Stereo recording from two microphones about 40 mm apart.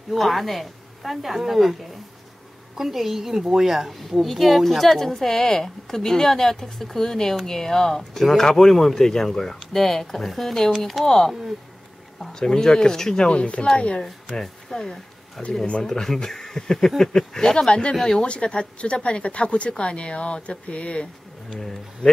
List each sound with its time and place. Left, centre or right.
0.1 s a woman's voice: centre
2.8 s a woman's voice: centre; by 14.0 s left
14.3 s a sound: centre
15.8 s speech: centre
17.6 s speech: left
21.5 s speech: centre